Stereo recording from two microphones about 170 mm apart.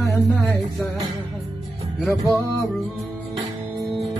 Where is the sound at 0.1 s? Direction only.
Centre (ahead or behind).